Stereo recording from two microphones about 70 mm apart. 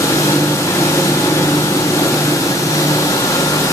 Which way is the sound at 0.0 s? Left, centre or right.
Left.